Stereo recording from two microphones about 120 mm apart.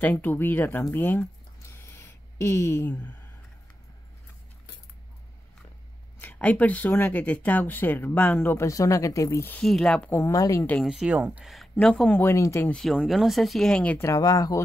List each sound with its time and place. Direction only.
0.0 s speech: 15° left (ahead or behind)
1.7 s a sound: 25° left (ahead or behind)
2.9 s speech: 10° left (ahead or behind)
6.1 s speech: 15° left (ahead or behind)
9.6 s speech: 5° left (ahead or behind)
10.1 s a woman's voice: 25° left (ahead or behind)
10.8 s speech: 5° right (ahead or behind)
11.5 s speech: 5° left (ahead or behind)
12.2 s a woman's voice: 25° left (ahead or behind)
12.6 s speech: 5° left (ahead or behind)
14.0 s a woman's voice: 30° left (ahead or behind)